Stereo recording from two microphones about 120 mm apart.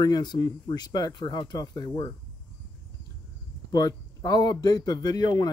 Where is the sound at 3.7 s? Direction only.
30° left (ahead or behind).